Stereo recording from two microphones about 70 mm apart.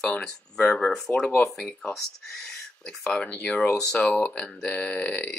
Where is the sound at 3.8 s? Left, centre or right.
Centre.